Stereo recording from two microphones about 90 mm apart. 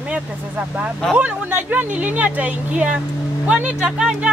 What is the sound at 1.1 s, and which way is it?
Speech, 15° right (ahead or behind).